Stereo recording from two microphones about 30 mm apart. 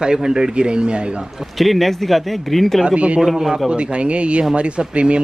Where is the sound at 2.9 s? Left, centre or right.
Right.